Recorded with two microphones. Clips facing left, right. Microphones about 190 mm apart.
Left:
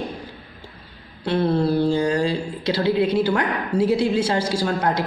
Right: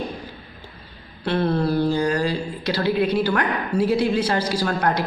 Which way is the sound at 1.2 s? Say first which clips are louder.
Left 1 dB; 25° left (ahead or behind).